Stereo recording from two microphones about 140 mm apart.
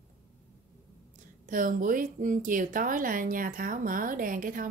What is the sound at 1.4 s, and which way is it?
A woman's voice, 70° right (ahead or behind).